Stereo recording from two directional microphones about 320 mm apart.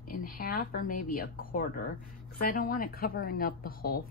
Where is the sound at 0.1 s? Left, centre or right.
Left.